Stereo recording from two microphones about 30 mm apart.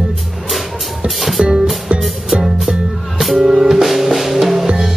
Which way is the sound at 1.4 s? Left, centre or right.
Right.